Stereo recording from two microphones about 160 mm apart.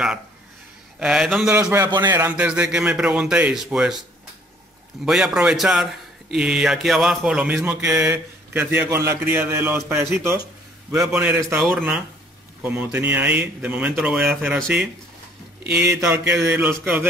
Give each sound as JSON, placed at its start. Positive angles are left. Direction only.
{"t": 0.9, "sound": "a man's voice", "side_deg": -5}
{"t": 1.5, "sound": "speech", "side_deg": -15}
{"t": 5.0, "sound": "a man's voice", "side_deg": 0}
{"t": 15.7, "sound": "speech", "side_deg": -15}